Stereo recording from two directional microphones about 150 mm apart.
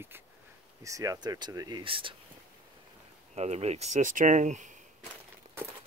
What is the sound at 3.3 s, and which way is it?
Speech, 45° right (ahead or behind).